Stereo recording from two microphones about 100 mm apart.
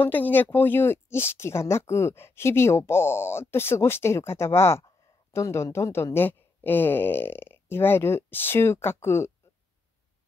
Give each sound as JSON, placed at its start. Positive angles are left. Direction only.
{"t": 0.0, "sound": "speech", "side_deg": 20}